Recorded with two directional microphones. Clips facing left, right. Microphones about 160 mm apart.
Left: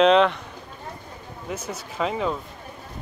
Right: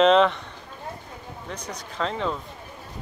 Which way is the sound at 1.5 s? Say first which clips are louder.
Left 5 dB; 5° left (ahead or behind).